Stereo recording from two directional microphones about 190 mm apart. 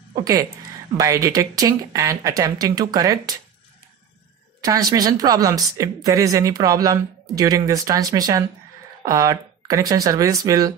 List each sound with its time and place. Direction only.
0.1 s speech: 20° right (ahead or behind)
4.6 s a woman's voice: 20° right (ahead or behind)